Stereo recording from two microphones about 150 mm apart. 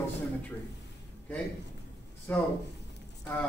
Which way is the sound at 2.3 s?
15° left (ahead or behind).